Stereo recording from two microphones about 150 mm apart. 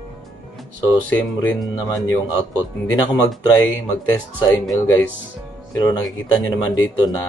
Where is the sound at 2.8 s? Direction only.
30° left (ahead or behind).